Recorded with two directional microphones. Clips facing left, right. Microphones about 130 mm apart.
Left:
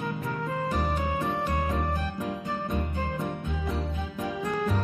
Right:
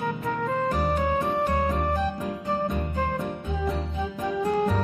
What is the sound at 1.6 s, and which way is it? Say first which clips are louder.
Music: right 3 dB; 25° right (ahead or behind).